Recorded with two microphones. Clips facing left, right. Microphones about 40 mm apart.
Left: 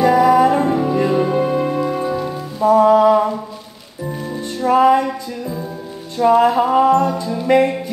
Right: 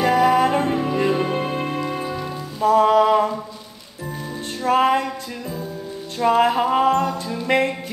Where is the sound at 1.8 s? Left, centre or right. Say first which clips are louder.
Left 6 dB; centre.